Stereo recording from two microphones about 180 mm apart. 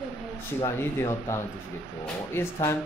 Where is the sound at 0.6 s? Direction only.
15° left (ahead or behind).